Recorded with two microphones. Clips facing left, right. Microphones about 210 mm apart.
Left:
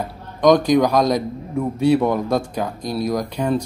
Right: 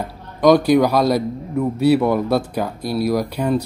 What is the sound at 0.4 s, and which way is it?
A man's voice, 5° right (ahead or behind).